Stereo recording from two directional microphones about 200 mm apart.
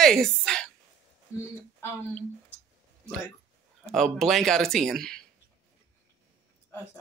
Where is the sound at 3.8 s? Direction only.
Centre (ahead or behind).